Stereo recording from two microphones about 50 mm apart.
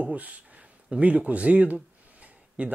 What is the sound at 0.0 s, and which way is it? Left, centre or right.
Speech, right.